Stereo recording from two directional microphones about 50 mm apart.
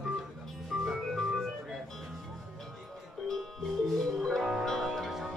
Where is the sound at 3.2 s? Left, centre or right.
Centre.